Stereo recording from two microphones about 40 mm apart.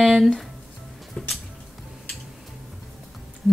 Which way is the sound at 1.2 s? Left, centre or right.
Left.